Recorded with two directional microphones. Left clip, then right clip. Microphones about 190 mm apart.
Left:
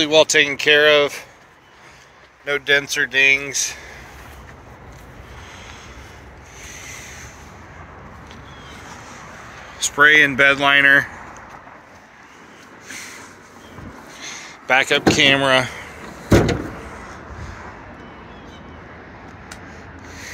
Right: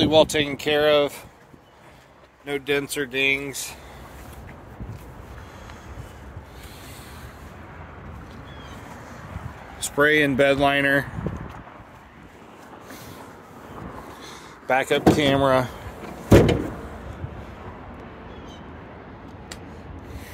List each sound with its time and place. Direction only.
0.0 s speech: 15° right (ahead or behind)
2.4 s speech: 5° right (ahead or behind)
9.8 s speech: 40° right (ahead or behind)
14.2 s speech: 10° right (ahead or behind)